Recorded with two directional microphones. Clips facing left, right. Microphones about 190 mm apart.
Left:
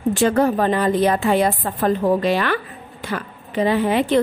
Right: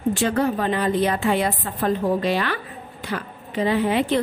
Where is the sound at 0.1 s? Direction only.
45° left (ahead or behind).